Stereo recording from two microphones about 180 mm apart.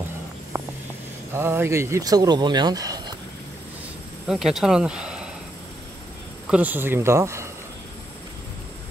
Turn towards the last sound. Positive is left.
turn(degrees=-15)  # may be behind; listen again after turning